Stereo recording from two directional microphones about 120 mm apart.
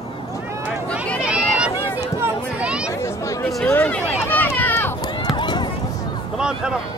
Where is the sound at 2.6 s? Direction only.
10° right (ahead or behind).